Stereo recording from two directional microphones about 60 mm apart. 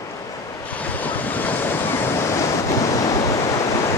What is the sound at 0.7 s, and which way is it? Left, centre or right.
Waves, left.